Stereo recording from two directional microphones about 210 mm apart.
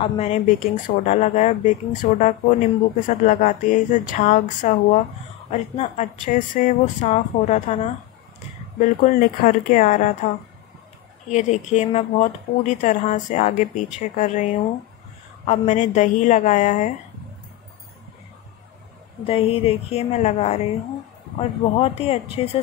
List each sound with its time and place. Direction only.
0.0 s speech: 30° left (ahead or behind)
11.2 s speech: 35° left (ahead or behind)
19.2 s speech: 25° left (ahead or behind)